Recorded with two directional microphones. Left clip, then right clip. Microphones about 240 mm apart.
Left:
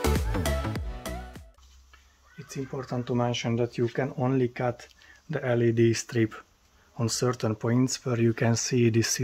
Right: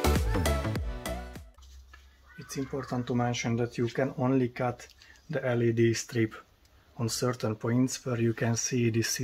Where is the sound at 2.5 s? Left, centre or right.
Left.